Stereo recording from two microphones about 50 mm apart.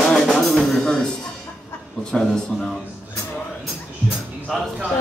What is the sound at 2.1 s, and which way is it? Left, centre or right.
Speech, centre.